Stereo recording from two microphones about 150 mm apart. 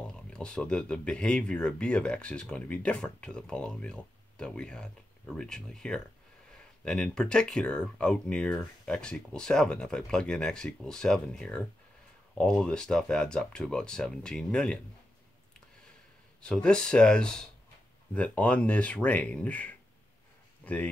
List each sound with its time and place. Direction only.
0.0 s speech: 5° left (ahead or behind)
16.3 s speech: 5° left (ahead or behind)